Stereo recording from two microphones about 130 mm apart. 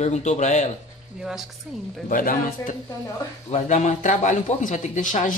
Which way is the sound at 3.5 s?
65° left (ahead or behind).